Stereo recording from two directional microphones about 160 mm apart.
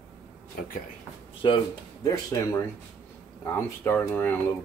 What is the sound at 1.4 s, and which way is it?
Speech, 30° left (ahead or behind).